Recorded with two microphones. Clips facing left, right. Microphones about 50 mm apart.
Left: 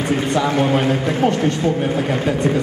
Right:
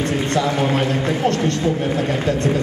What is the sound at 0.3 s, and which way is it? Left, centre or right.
A man's voice, centre.